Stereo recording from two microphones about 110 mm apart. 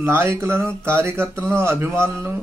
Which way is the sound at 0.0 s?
20° right (ahead or behind).